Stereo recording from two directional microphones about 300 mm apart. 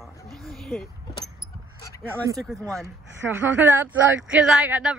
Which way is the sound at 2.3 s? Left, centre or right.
Centre.